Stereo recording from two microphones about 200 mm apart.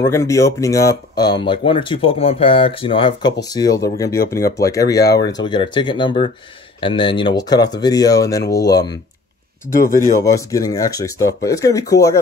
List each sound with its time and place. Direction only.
0.0 s speech: 15° left (ahead or behind)
9.9 s speech: 15° left (ahead or behind)